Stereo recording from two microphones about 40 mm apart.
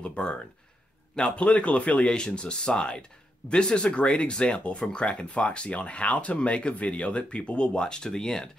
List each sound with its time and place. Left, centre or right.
0.0 s speech: left
2.0 s speech: left